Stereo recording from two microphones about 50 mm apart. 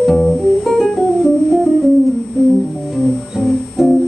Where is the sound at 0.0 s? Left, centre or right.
Centre.